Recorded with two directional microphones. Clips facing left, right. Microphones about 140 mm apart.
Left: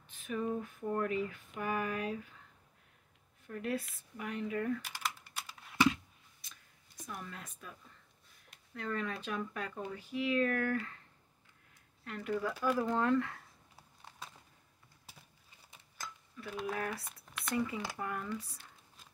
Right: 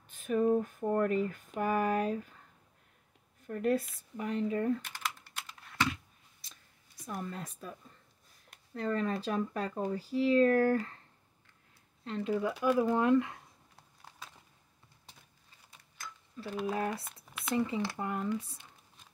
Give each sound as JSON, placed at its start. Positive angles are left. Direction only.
{"t": 0.1, "sound": "a sound", "side_deg": -45}
{"t": 3.4, "sound": "a sound", "side_deg": -45}
{"t": 4.2, "sound": "speech", "side_deg": -30}
{"t": 4.8, "sound": "typing", "side_deg": 5}
{"t": 7.1, "sound": "speech", "side_deg": -35}
{"t": 8.7, "sound": "speech", "side_deg": -35}
{"t": 12.0, "sound": "speech", "side_deg": -25}
{"t": 12.5, "sound": "speech", "side_deg": -5}
{"t": 12.9, "sound": "speech", "side_deg": -15}
{"t": 16.6, "sound": "speech", "side_deg": -25}
{"t": 17.0, "sound": "squish", "side_deg": 0}
{"t": 17.6, "sound": "speech", "side_deg": -25}